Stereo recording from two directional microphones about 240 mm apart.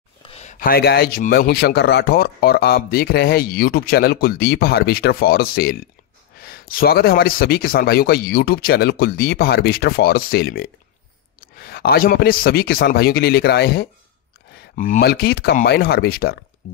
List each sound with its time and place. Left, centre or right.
0.3 s a man's voice: left